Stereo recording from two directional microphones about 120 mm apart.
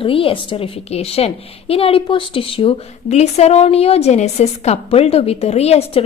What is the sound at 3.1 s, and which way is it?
A woman's voice, 65° left (ahead or behind).